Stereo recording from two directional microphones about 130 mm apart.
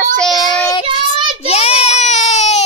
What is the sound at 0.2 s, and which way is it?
Child singing, centre (ahead or behind).